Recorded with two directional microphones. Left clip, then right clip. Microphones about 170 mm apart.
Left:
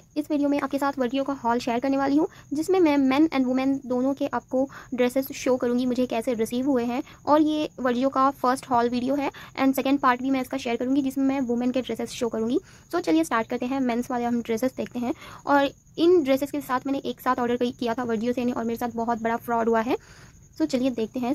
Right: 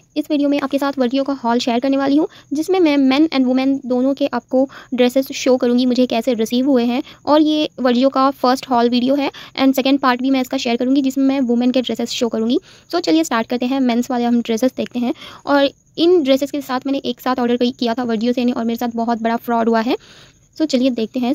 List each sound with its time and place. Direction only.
0.1 s speech: 40° right (ahead or behind)